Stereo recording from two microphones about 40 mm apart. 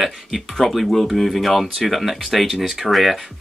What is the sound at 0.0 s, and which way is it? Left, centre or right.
Speech, centre.